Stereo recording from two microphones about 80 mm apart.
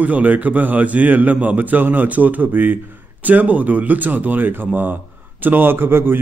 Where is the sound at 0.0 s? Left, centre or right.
Centre.